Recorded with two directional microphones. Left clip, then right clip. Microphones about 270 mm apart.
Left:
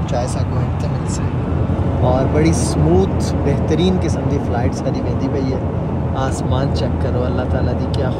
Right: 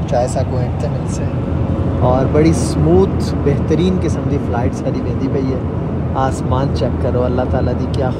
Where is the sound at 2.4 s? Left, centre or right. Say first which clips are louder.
Right 3 dB; centre.